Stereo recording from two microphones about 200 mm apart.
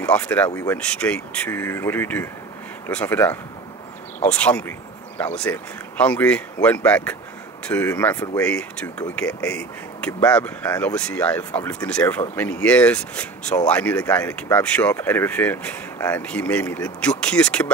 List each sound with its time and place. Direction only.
0.0 s speech: 5° left (ahead or behind)
10.7 s speech: 15° left (ahead or behind)
11.0 s speech: 5° left (ahead or behind)